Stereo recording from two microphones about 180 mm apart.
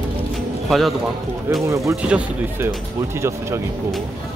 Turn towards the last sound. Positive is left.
turn(degrees=-15)  # may be behind; listen again after turning